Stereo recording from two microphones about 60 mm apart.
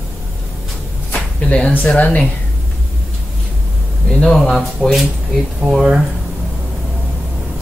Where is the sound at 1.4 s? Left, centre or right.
Centre.